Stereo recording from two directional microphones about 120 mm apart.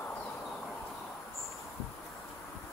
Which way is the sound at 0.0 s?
15° left (ahead or behind).